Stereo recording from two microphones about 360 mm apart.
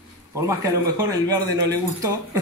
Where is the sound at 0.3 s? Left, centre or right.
Centre.